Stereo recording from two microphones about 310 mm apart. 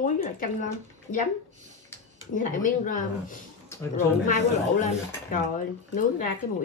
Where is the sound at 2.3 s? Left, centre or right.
Left.